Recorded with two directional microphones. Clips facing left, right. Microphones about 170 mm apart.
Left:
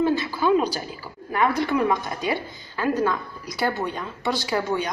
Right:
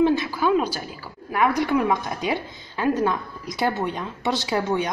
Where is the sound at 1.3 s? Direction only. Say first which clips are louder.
Right 1 dB; 10° right (ahead or behind).